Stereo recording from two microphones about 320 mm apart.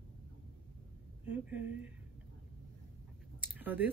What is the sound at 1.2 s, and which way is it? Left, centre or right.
Speech, centre.